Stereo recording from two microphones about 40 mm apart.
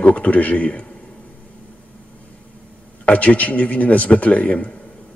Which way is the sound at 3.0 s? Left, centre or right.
Left.